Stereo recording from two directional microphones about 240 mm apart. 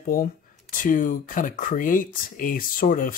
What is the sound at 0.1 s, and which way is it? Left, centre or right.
Speech, left.